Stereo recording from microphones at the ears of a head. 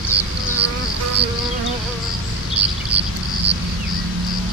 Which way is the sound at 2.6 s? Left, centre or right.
Right.